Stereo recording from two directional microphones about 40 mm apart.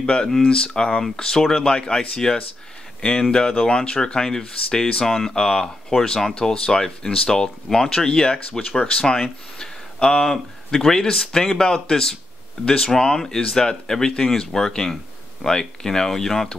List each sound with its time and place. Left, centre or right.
0.0 s speech: left
9.0 s speech: centre